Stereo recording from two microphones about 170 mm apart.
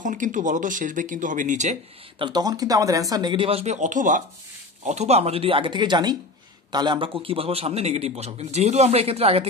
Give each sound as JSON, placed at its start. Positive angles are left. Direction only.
{"t": 0.0, "sound": "speech", "side_deg": -50}
{"t": 2.1, "sound": "a man's voice", "side_deg": -25}